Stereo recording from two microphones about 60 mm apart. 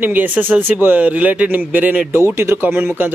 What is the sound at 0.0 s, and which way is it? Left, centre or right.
Speech, right.